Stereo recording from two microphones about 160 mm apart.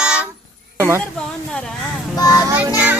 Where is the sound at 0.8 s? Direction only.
15° right (ahead or behind).